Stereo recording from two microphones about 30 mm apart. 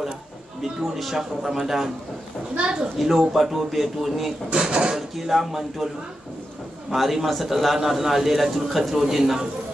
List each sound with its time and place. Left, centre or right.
0.6 s a man's voice: centre
1.1 s a man's voice: centre
2.5 s a woman's voice: right
3.0 s a man's voice: centre
4.6 s a woman's voice: right
5.1 s a man's voice: centre
7.0 s a man's voice: centre